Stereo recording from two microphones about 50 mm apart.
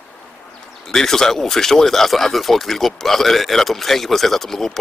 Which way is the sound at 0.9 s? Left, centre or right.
Centre.